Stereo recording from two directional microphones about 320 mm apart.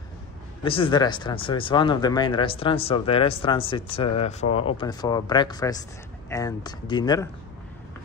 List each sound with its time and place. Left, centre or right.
0.7 s speech: centre